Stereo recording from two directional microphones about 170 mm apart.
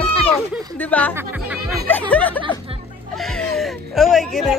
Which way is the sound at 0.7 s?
10° left (ahead or behind).